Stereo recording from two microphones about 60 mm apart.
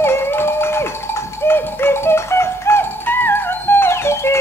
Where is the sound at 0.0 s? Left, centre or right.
Left.